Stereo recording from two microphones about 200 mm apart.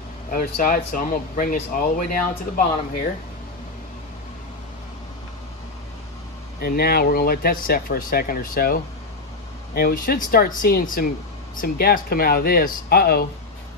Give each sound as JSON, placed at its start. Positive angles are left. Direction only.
{"t": 0.3, "sound": "speech", "side_deg": 45}
{"t": 6.6, "sound": "speech", "side_deg": 50}
{"t": 9.8, "sound": "speech", "side_deg": 50}